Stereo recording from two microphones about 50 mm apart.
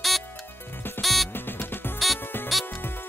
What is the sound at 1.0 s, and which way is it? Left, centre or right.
Music, centre.